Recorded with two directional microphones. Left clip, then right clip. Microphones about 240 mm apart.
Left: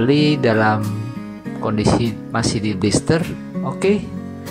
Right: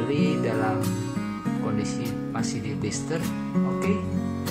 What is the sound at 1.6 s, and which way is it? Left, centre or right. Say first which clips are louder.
Speech: left 14 dB; left.